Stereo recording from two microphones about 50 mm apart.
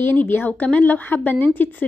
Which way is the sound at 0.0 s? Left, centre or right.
Left.